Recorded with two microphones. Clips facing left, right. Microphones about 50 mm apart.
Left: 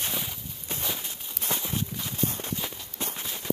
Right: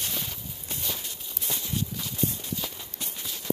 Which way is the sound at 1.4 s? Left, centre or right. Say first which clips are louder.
Left 2 dB; left.